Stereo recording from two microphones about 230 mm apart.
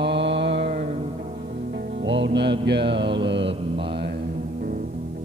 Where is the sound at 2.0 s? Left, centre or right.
Right.